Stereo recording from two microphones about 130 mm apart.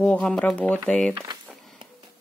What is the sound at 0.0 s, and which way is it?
Speech, 5° left (ahead or behind).